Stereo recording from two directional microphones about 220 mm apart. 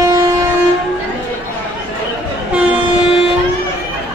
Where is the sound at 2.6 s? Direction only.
10° right (ahead or behind).